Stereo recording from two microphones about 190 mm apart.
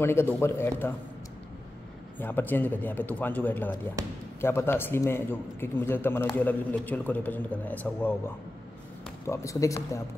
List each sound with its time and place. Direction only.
0.0 s a man's voice: 15° left (ahead or behind)
2.1 s a man's voice: 10° left (ahead or behind)
9.3 s a man's voice: 15° left (ahead or behind)